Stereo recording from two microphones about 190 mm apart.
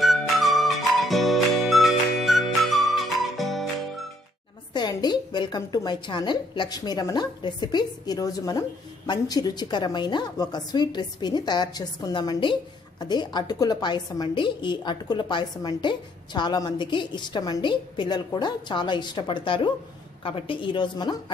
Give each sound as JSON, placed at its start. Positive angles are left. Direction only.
{"t": 0.0, "sound": "music", "side_deg": 0}
{"t": 4.7, "sound": "a woman's voice", "side_deg": 25}